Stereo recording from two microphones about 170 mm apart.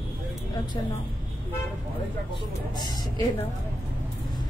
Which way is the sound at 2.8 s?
25° left (ahead or behind).